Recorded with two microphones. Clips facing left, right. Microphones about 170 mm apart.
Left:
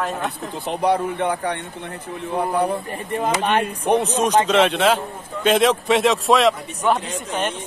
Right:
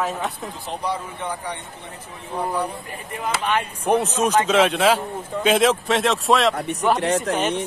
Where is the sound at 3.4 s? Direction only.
45° left (ahead or behind).